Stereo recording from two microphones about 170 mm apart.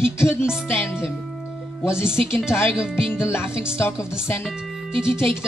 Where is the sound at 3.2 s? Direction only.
15° left (ahead or behind).